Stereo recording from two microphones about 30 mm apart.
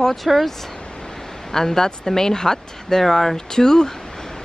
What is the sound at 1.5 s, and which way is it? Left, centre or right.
Speech, centre.